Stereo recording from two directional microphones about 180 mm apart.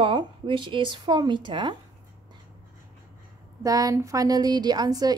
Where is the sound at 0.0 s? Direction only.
25° right (ahead or behind).